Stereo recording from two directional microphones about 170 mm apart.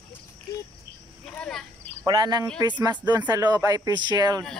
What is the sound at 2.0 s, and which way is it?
Speech, 25° right (ahead or behind).